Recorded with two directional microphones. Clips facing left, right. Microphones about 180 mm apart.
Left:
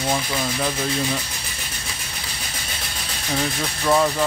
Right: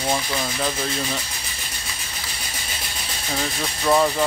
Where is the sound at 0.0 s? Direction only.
Centre (ahead or behind).